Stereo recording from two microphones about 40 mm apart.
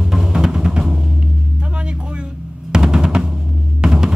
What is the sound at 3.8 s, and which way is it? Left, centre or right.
Music, centre.